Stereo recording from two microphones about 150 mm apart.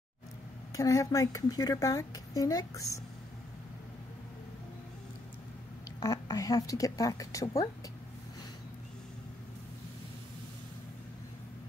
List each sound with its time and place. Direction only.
0.7 s speech: 20° left (ahead or behind)
5.9 s speech: 25° left (ahead or behind)